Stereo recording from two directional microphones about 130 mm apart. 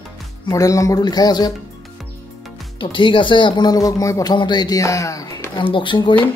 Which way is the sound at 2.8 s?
40° left (ahead or behind).